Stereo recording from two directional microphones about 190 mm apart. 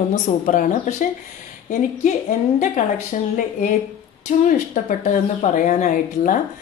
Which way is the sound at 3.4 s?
40° left (ahead or behind).